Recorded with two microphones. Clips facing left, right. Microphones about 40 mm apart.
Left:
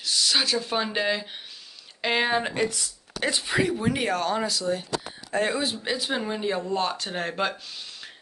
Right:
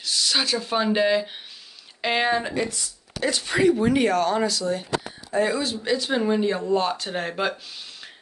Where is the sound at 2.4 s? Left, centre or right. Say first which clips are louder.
Even; left.